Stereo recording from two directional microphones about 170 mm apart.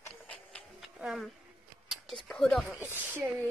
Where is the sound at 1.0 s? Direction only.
Centre (ahead or behind).